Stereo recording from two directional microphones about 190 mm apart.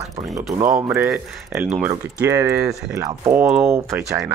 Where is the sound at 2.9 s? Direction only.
15° right (ahead or behind).